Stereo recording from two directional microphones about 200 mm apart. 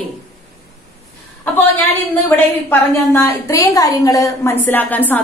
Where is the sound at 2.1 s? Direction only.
10° left (ahead or behind).